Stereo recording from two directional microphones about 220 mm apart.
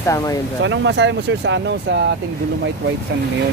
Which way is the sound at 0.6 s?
55° right (ahead or behind).